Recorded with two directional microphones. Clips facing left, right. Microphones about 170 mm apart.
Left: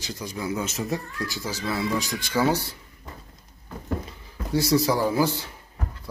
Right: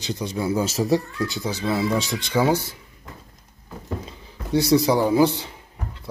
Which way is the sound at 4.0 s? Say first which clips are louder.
Even; 20° right (ahead or behind).